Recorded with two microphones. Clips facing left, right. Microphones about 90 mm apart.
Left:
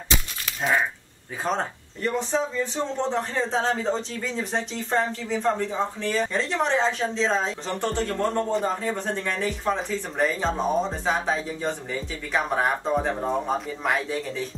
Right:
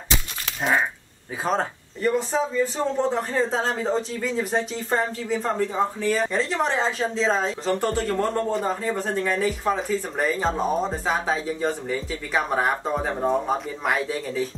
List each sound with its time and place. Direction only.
1.4 s speech: 5° right (ahead or behind)